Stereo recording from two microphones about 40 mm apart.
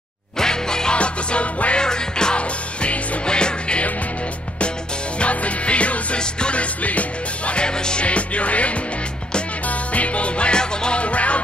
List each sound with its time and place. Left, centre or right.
0.4 s music: centre
0.9 s music: left
1.8 s music: centre
5.2 s music: left